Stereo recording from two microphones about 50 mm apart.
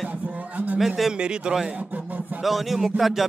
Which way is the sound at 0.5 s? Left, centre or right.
Right.